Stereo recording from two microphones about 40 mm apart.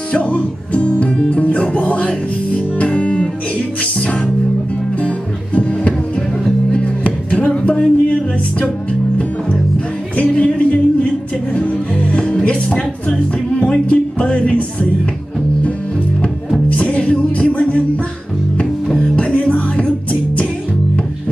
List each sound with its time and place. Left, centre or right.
0.1 s speech: left
5.0 s music: left
10.1 s music: left
16.8 s music: left
19.3 s music: left